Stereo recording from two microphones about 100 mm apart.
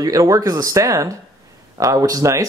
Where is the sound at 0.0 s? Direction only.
35° right (ahead or behind).